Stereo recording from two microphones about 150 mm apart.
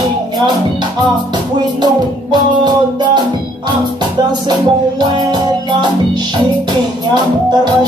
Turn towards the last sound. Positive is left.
turn(degrees=-30)  # may be behind; listen again after turning